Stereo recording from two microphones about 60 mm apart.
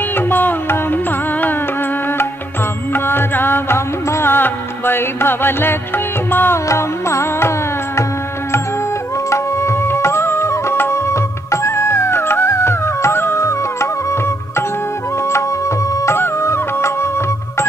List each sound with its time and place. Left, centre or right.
0.1 s music: left
2.9 s music: left
6.7 s music: left
9.3 s music: left
16.1 s music: left